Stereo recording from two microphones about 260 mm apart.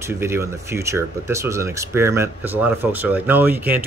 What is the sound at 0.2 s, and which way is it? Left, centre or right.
Speech, centre.